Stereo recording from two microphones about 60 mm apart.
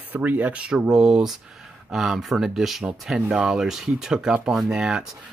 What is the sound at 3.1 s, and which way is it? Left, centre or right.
Speech, centre.